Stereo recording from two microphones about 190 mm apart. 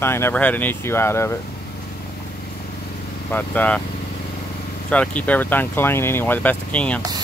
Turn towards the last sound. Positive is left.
turn(degrees=5)  # may be behind; listen again after turning